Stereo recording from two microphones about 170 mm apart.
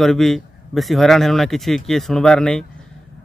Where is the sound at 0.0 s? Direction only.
Centre (ahead or behind).